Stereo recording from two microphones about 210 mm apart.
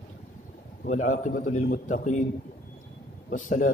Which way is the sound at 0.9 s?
35° left (ahead or behind).